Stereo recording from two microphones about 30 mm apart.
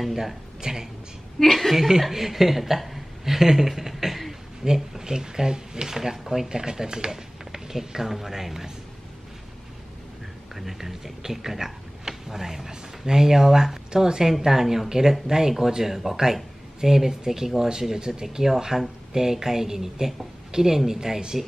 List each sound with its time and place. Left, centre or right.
0.1 s speech: centre
1.4 s a woman's voice: centre
1.8 s a woman's voice: centre
4.6 s speech: right; by 8.6 s centre
10.5 s speech: centre; by 14.3 s right
14.4 s speech: centre